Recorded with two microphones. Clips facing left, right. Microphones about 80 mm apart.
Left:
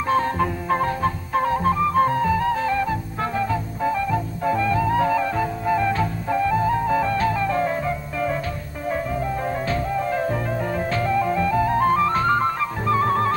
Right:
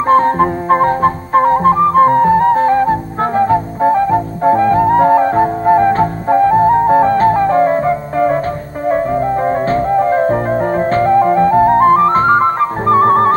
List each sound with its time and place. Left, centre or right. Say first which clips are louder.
0.1 s flute: right 11 dB; right
9.5 s music: right 11 dB; right